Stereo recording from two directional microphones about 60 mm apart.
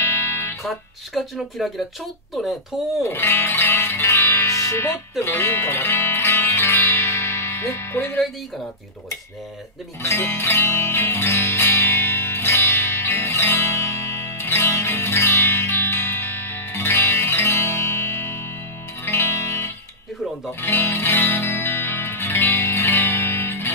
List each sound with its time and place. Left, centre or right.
0.0 s music: left
0.7 s speech: centre
3.0 s speech: left
4.5 s music: left
4.7 s speech: left
6.1 s music: left
6.4 s music: left
7.9 s speech: left
10.0 s music: left
22.9 s music: left